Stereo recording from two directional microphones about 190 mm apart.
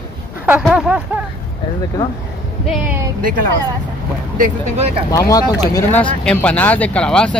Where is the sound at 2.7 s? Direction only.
10° right (ahead or behind).